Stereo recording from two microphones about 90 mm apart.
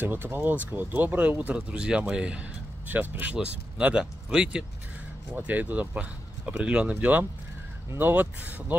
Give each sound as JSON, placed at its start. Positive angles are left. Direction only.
{"t": 0.0, "sound": "speech", "side_deg": -25}